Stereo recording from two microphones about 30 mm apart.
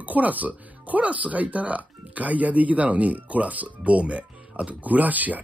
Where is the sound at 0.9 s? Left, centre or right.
Right.